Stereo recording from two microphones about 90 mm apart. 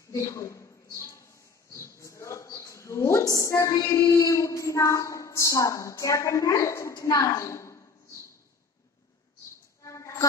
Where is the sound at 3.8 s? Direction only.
30° left (ahead or behind).